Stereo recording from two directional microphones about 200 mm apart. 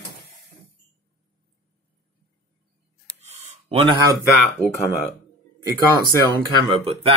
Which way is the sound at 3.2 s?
35° right (ahead or behind).